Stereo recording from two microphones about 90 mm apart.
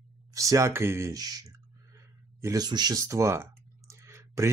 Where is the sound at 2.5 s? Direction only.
50° right (ahead or behind).